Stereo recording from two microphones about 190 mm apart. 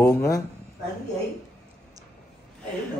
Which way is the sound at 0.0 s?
15° left (ahead or behind).